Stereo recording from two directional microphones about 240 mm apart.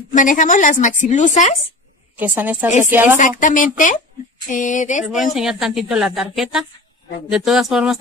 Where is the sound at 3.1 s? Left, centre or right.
Left.